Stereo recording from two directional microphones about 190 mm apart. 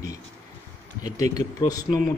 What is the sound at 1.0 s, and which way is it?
Speech, 20° left (ahead or behind).